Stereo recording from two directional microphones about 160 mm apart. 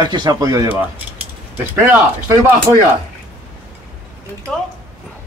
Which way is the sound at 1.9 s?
10° right (ahead or behind).